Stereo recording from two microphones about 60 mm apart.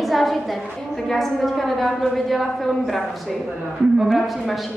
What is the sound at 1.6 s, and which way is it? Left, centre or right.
A woman's voice, centre.